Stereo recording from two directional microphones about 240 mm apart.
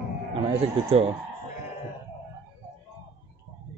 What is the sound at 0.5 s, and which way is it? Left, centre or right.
Speech, right.